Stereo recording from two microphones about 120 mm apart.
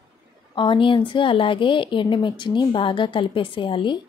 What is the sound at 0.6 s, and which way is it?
A woman's voice, 45° left (ahead or behind).